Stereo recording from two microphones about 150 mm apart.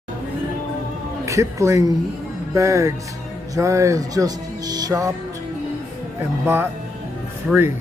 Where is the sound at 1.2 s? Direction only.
20° right (ahead or behind).